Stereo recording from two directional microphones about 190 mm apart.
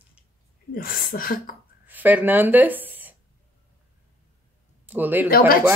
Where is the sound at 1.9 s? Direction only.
10° right (ahead or behind).